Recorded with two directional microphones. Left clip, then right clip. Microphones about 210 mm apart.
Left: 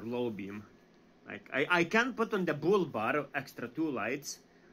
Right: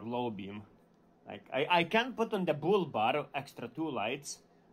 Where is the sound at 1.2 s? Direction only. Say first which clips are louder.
Left 1 dB; 20° right (ahead or behind).